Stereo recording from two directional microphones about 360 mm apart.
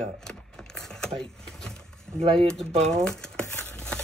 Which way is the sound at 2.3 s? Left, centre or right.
Centre.